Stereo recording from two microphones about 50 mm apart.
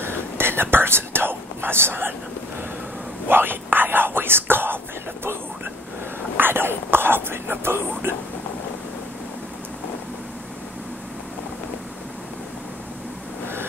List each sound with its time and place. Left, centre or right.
0.0 s whispering: right
3.3 s whispering: right
6.3 s speech: right